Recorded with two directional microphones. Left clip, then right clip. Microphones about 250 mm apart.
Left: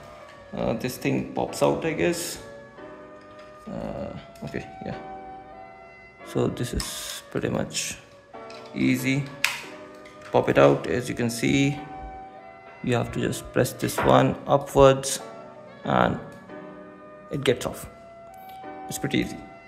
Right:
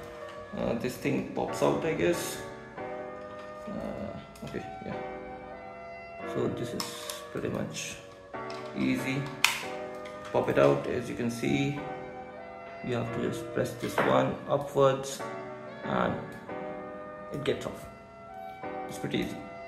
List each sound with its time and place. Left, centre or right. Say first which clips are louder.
0.6 s speech: left 4 dB; left
6.2 s speech: left 5 dB; left
10.3 s speech: left 6 dB; left
12.8 s speech: left 6 dB; left
17.4 s speech: left 8 dB; left
18.9 s speech: left 8 dB; left